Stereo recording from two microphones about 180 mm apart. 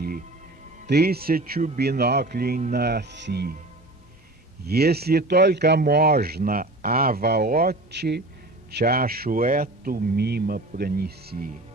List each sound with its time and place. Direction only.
0.8 s speech: 60° right (ahead or behind)
4.6 s speech: 60° right (ahead or behind)